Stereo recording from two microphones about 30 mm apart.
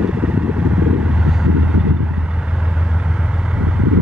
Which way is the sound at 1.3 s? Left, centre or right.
Centre.